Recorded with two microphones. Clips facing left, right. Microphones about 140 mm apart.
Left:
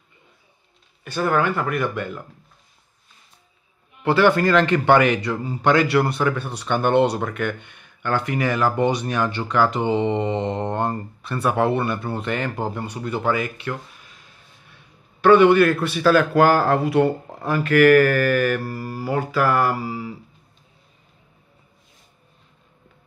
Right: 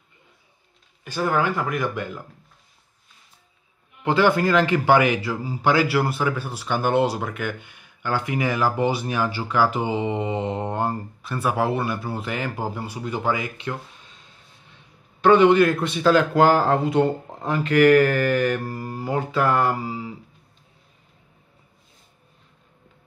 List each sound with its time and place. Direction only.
1.1 s speech: 10° right (ahead or behind)
4.0 s a man's voice: 15° right (ahead or behind)